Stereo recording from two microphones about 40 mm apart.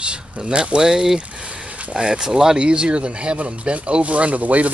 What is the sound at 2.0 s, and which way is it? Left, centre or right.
Speech, centre.